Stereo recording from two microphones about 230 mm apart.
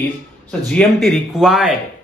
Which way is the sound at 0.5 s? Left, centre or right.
Centre.